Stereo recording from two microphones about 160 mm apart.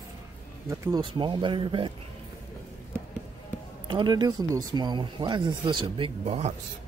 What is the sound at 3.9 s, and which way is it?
Speech, 30° right (ahead or behind).